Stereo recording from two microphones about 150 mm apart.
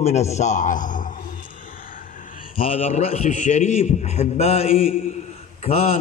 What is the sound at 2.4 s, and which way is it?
A man's voice, 35° left (ahead or behind).